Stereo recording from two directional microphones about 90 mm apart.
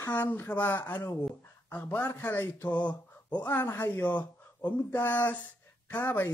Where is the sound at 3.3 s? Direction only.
20° left (ahead or behind).